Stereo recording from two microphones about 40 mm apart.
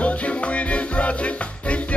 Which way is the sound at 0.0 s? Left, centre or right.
Left.